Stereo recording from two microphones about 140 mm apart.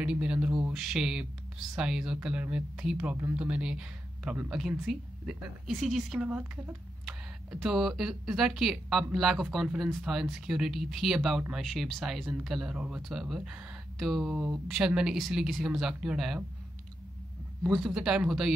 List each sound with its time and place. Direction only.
0.0 s speech: 5° right (ahead or behind)
17.6 s speech: centre (ahead or behind)